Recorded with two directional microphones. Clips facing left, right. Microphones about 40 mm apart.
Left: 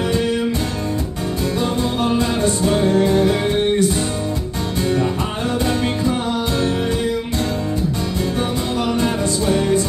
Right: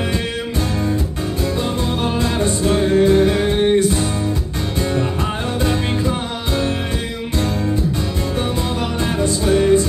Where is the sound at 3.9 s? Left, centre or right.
Centre.